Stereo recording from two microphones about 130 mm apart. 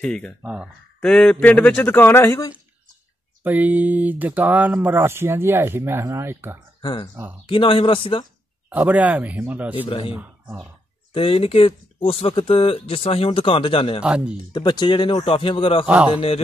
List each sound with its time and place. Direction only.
0.0 s a man's voice: 5° left (ahead or behind)
0.4 s speech: 10° right (ahead or behind)
1.0 s a man's voice: 5° left (ahead or behind); by 2.5 s 25° left (ahead or behind)
3.4 s speech: 15° right (ahead or behind)
6.8 s speech: 40° left (ahead or behind)
8.6 s speech: 10° right (ahead or behind)
9.8 s speech: 45° left (ahead or behind)
10.4 s speech: 10° right (ahead or behind)
11.1 s speech: 45° left (ahead or behind)
14.0 s speech: 10° right (ahead or behind)
14.5 s speech: 35° left (ahead or behind)